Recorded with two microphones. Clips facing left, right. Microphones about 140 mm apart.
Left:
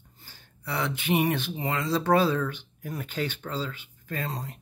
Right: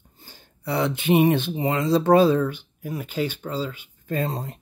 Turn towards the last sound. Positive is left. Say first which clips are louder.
# right 7 dB
turn(degrees=-25)  # may be behind; listen again after turning